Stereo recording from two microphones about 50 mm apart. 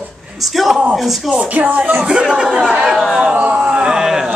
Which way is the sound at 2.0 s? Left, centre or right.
Centre.